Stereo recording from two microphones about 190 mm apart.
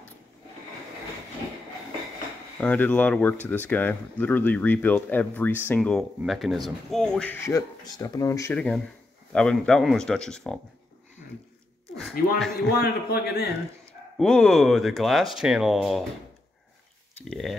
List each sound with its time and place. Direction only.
2.6 s speech: 10° left (ahead or behind)
12.7 s a man's voice: 55° left (ahead or behind)
14.1 s speech: 5° left (ahead or behind)
17.1 s speech: centre (ahead or behind)